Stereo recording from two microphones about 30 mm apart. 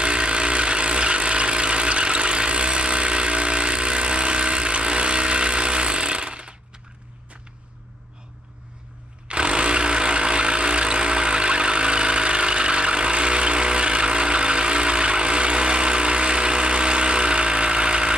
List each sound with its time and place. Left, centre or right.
0.0 s vehicle: right
9.3 s music: right